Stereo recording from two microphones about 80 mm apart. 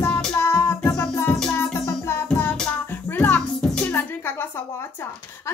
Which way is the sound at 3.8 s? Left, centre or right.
Left.